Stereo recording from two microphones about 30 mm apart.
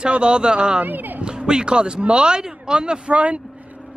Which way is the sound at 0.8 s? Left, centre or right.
Right.